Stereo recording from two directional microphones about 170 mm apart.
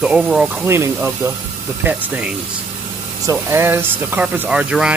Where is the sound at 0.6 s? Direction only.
15° right (ahead or behind).